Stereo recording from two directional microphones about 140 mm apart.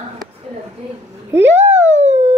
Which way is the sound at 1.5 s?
55° right (ahead or behind).